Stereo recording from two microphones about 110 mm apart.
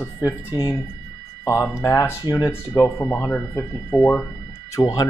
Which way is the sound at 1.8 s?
25° left (ahead or behind).